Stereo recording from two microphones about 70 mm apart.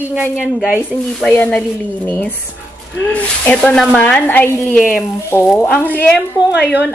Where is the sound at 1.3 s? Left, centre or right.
Left.